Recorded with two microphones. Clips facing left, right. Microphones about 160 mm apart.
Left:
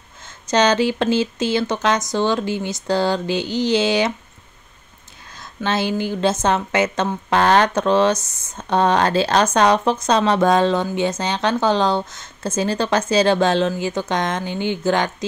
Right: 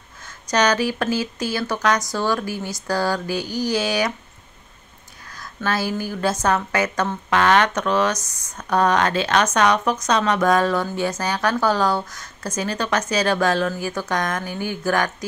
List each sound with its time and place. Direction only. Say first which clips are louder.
0.2 s speech: left 3 dB; 25° left (ahead or behind)
5.3 s speech: left 2 dB; 25° left (ahead or behind)